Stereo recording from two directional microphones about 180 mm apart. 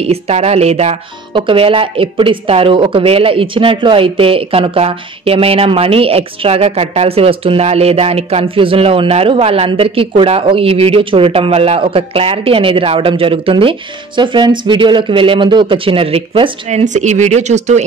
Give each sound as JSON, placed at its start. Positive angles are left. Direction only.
{"t": 0.0, "sound": "speech", "side_deg": -35}